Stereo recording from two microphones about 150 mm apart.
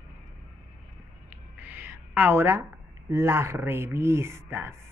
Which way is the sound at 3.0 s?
15° right (ahead or behind).